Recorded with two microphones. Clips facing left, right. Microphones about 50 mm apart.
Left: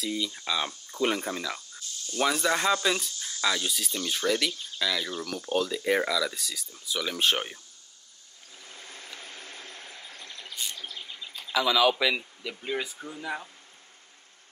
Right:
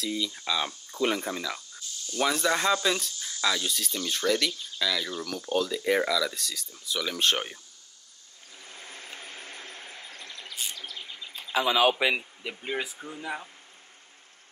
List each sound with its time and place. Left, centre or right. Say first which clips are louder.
0.0 s speech: even; centre
8.6 s a sound: right 1 dB; right
10.2 s bird: even; centre
11.0 s insect: even; centre
11.5 s speech: even; right; by 13.5 s centre